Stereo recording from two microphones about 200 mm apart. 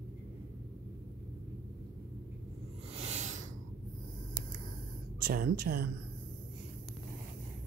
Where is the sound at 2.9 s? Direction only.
35° right (ahead or behind).